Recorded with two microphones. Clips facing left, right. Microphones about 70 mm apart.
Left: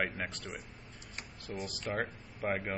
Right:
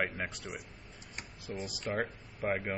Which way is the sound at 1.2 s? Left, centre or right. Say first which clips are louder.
Even; centre.